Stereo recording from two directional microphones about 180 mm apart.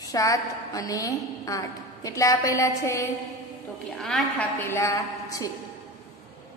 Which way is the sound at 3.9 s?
Centre (ahead or behind).